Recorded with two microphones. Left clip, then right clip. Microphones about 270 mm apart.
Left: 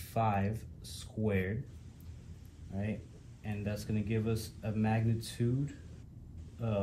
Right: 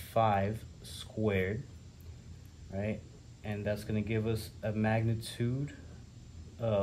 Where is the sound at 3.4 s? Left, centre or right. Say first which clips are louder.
Right 5 dB; right.